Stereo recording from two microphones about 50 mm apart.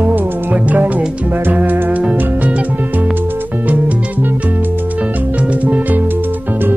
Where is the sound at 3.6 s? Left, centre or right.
Right.